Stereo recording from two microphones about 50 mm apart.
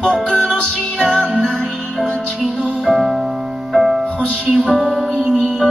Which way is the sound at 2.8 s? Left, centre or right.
Centre.